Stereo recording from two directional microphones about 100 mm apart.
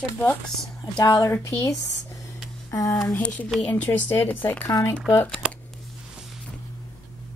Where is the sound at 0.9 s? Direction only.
50° left (ahead or behind).